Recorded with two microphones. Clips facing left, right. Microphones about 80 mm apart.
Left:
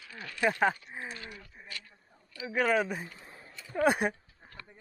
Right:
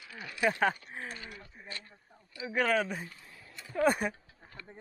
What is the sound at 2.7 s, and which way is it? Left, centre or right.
Speech, centre.